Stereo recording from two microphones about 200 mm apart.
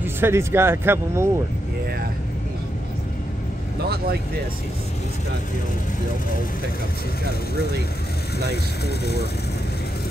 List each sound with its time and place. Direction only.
0.0 s speech: 10° right (ahead or behind)
8.8 s speech: 55° left (ahead or behind)